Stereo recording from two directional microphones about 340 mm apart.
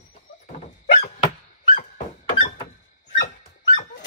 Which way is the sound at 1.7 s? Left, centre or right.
Left.